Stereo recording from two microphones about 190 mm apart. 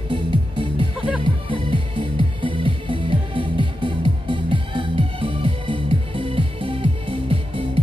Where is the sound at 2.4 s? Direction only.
25° right (ahead or behind).